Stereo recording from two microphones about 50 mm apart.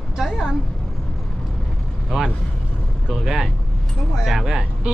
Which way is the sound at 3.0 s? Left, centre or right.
Centre.